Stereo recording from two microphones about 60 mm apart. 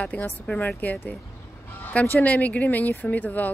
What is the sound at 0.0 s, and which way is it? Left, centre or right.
Speech, left.